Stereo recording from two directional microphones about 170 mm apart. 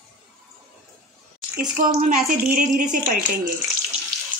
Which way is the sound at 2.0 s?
55° right (ahead or behind).